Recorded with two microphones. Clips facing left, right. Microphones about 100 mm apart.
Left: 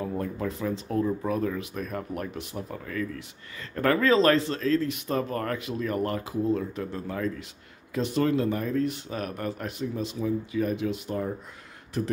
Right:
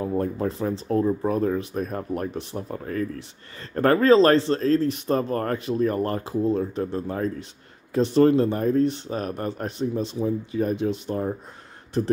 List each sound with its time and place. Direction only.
0.0 s speech: 35° right (ahead or behind)